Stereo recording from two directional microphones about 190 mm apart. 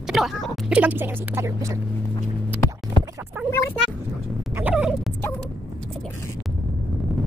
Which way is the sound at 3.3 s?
10° right (ahead or behind).